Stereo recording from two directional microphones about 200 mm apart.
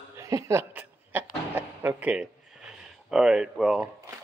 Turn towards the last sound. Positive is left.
turn(degrees=-5)  # may be behind; listen again after turning